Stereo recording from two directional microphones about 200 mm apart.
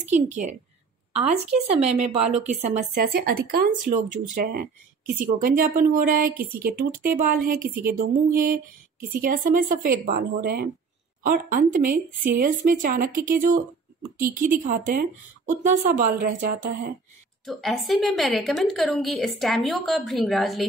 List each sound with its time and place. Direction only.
0.0 s a woman's voice: 40° right (ahead or behind)
17.5 s a woman's voice: centre (ahead or behind)